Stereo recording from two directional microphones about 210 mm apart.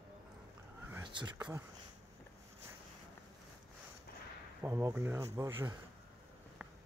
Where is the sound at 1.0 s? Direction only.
20° right (ahead or behind).